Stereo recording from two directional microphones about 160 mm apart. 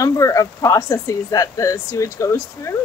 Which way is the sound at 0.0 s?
20° left (ahead or behind).